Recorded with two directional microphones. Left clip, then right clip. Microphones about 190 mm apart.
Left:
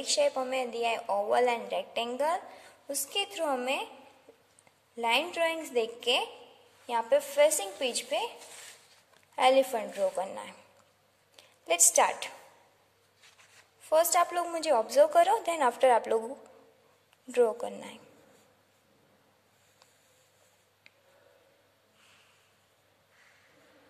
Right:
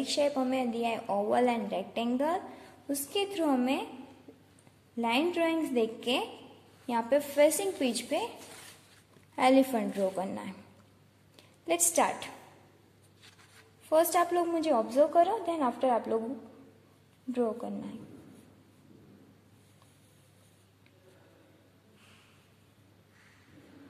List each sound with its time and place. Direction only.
0.0 s a woman's voice: 15° left (ahead or behind)
4.9 s a woman's voice: 15° left (ahead or behind)
9.3 s a woman's voice: 10° left (ahead or behind)
14.1 s a woman's voice: 20° left (ahead or behind); by 16.2 s 35° left (ahead or behind)
17.3 s a woman's voice: 35° left (ahead or behind)